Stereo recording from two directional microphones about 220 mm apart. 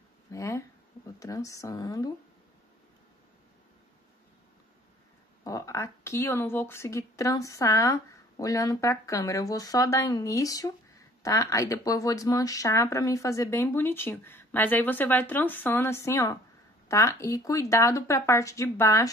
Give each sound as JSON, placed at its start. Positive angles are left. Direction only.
{"t": 0.3, "sound": "a sound", "side_deg": 15}
{"t": 1.2, "sound": "speech", "side_deg": 15}
{"t": 5.4, "sound": "speech", "side_deg": 15}